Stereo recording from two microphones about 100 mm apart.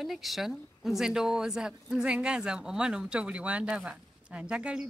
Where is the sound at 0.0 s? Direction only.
Centre (ahead or behind).